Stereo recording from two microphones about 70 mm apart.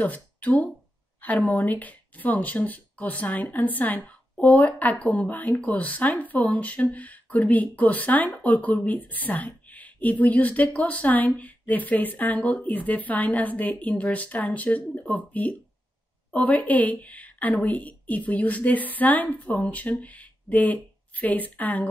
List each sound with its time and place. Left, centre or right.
0.0 s speech: left